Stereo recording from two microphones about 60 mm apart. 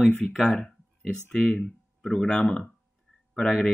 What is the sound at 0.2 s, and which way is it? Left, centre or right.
Speech, centre.